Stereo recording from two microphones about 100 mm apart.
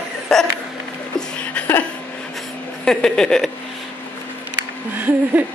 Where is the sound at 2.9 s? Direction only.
5° left (ahead or behind).